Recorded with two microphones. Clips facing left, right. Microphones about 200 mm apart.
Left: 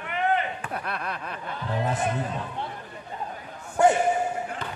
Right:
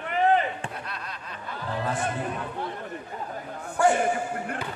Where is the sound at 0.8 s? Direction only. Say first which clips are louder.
Left 6 dB; 60° left (ahead or behind).